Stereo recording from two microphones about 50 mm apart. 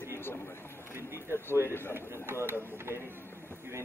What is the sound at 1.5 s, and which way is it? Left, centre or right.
Speech, left.